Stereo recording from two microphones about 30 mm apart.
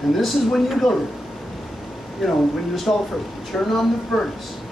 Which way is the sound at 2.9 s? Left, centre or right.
Left.